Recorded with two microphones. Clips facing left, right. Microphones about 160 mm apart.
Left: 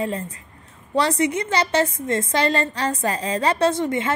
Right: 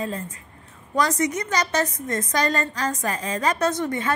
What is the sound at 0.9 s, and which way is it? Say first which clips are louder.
A woman's voice: left 2 dB; 30° left (ahead or behind).